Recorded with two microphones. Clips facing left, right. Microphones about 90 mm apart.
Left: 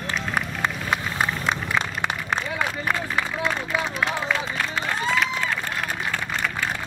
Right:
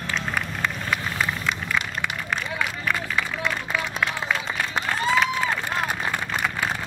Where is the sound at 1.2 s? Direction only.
35° left (ahead or behind).